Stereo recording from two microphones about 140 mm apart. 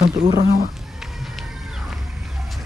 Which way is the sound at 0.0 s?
30° right (ahead or behind).